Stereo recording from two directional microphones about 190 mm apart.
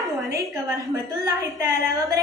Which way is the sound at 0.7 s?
15° right (ahead or behind).